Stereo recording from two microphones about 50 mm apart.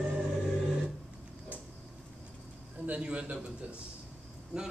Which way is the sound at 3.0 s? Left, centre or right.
Centre.